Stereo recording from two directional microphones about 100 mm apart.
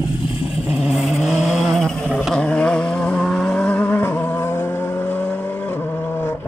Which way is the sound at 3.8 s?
20° left (ahead or behind).